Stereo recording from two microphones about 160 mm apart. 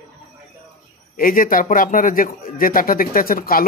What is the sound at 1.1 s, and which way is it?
Speech, 60° left (ahead or behind).